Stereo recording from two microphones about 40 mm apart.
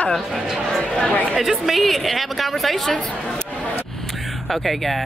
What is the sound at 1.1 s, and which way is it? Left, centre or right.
Chatter, left.